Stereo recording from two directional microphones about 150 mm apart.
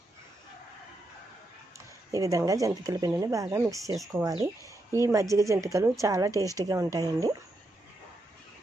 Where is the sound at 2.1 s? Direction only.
20° right (ahead or behind).